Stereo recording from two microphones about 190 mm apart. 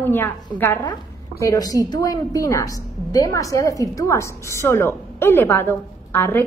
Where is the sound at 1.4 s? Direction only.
20° left (ahead or behind).